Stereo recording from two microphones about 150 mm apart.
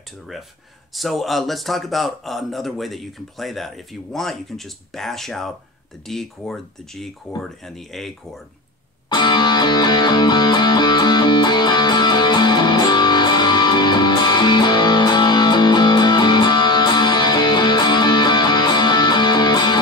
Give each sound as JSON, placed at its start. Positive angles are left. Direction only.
{"t": 0.9, "sound": "speech", "side_deg": 0}
{"t": 9.1, "sound": "music", "side_deg": 30}